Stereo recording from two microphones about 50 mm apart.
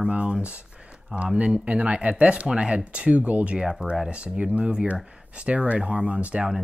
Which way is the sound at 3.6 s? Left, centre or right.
Centre.